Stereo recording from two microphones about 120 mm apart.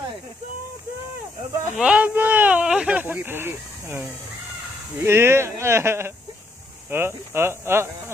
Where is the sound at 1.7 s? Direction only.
10° right (ahead or behind).